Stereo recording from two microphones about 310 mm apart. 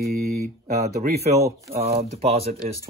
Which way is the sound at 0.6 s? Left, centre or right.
Right.